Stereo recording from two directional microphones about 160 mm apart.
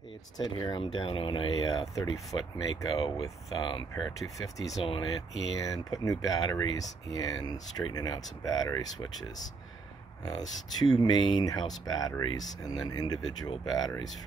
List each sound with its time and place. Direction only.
0.4 s speech: 30° left (ahead or behind)
10.2 s speech: 25° left (ahead or behind)